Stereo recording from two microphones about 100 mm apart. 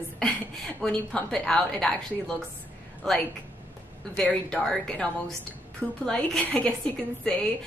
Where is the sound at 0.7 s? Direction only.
10° left (ahead or behind).